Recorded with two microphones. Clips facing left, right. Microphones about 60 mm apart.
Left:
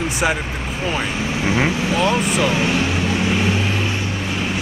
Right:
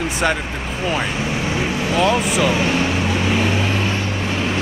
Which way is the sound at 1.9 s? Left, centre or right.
Centre.